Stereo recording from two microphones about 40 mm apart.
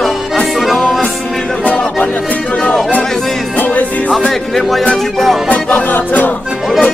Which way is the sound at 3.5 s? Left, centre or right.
Left.